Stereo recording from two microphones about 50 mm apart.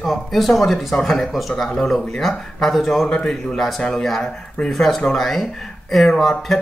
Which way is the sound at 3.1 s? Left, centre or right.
Centre.